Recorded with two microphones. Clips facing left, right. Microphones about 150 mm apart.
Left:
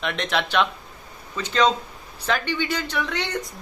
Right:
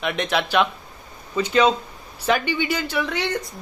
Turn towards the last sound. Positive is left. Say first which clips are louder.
# right 3 dB
turn(degrees=-5)  # may be behind; listen again after turning